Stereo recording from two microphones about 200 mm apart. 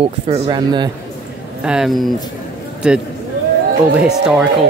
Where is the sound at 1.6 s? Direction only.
Centre (ahead or behind).